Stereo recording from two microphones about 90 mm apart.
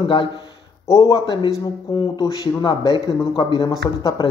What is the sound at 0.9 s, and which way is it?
Speech, 35° left (ahead or behind).